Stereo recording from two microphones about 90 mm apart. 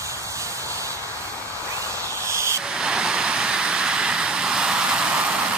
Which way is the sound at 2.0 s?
30° right (ahead or behind).